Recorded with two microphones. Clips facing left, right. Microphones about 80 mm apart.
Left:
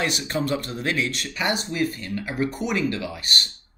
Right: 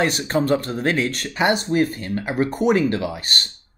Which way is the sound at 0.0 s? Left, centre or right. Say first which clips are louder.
Right 5 dB; right.